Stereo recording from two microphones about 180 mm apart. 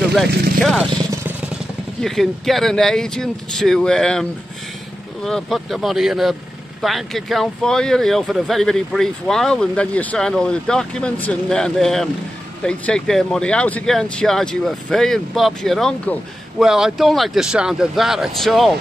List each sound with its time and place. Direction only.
0.6 s speech: centre (ahead or behind)
0.9 s vehicle: 15° right (ahead or behind)
2.0 s speech: centre (ahead or behind)